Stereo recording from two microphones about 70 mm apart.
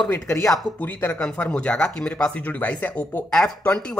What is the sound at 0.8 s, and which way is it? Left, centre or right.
Speech, left.